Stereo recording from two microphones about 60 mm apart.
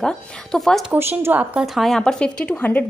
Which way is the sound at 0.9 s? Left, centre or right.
Right.